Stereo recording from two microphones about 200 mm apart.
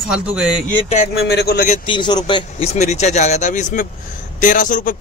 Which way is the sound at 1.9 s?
25° left (ahead or behind).